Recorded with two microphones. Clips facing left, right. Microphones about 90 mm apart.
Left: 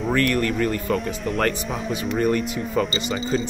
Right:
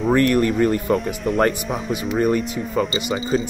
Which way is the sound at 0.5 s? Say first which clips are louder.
Right 4 dB; 5° right (ahead or behind).